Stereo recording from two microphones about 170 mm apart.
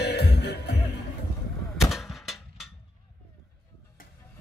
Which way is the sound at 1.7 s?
Centre (ahead or behind).